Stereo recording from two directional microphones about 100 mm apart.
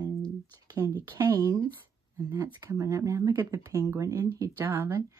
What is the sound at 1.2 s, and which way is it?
Speech, 35° right (ahead or behind).